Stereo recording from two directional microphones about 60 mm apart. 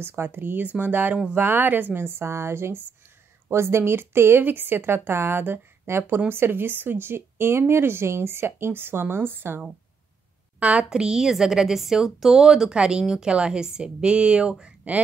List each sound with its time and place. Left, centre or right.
0.0 s speech: right
10.6 s a woman's voice: right
10.9 s a woman's voice: centre